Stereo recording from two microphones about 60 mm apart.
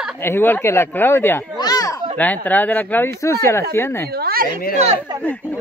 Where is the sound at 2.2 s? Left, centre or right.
Left.